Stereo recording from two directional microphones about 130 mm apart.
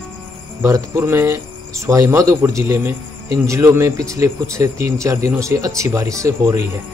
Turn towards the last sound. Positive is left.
turn(degrees=-20)  # may be behind; listen again after turning